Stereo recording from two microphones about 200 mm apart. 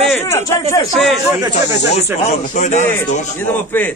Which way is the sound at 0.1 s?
15° left (ahead or behind).